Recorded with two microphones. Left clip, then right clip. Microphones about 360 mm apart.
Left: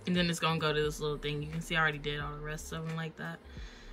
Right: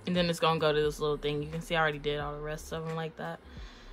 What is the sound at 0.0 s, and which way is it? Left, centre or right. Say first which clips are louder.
Speech: right 4 dB; centre.